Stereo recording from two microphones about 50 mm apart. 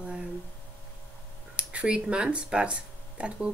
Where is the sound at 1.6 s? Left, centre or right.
Right.